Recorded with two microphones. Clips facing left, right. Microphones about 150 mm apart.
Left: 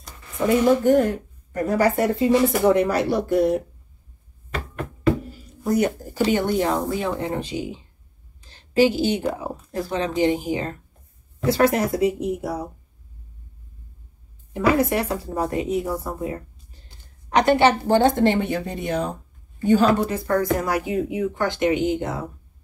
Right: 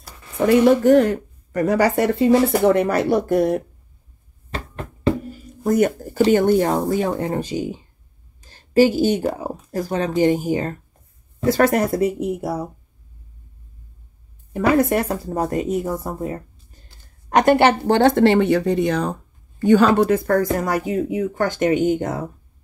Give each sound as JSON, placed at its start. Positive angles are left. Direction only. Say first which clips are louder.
{"t": 0.5, "sound": "a woman's voice", "louder": "right 4 dB", "side_deg": -80}
{"t": 2.7, "sound": "speech", "louder": "right 2 dB", "side_deg": -55}
{"t": 5.6, "sound": "a woman's voice", "louder": "right 3 dB", "side_deg": -50}
{"t": 14.5, "sound": "speech", "louder": "right 3 dB", "side_deg": -50}
{"t": 19.6, "sound": "speech", "louder": "right 3 dB", "side_deg": -75}
{"t": 20.0, "sound": "speech", "louder": "right 5 dB", "side_deg": -60}